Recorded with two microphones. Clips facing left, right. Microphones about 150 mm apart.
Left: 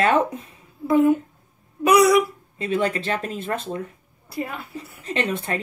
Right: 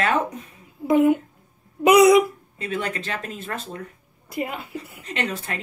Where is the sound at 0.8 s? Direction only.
20° right (ahead or behind).